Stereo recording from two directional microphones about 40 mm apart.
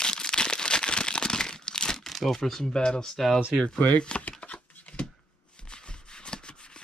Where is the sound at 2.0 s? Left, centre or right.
Centre.